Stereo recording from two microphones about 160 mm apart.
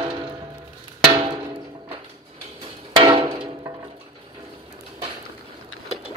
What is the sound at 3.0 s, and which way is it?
Music, 30° right (ahead or behind).